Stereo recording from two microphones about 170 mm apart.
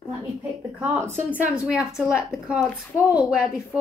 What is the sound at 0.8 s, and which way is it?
A woman's voice, 15° right (ahead or behind).